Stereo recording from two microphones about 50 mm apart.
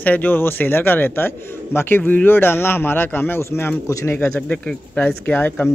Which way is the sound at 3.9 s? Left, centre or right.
Left.